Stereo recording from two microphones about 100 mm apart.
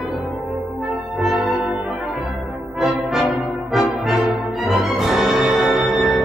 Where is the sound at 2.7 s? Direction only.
Centre (ahead or behind).